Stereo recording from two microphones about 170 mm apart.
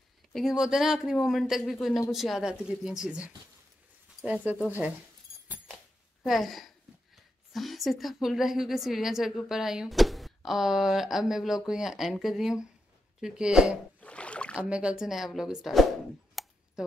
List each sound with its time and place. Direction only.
0.3 s a woman's voice: centre (ahead or behind)
6.2 s a woman's voice: centre (ahead or behind)
13.2 s rowboat: 5° right (ahead or behind)
14.7 s a woman's voice: 5° right (ahead or behind)
16.4 s a sound: centre (ahead or behind)